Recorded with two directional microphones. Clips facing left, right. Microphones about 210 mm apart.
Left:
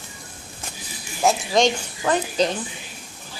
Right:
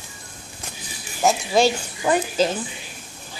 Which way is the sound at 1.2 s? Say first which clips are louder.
Right 1 dB; 5° right (ahead or behind).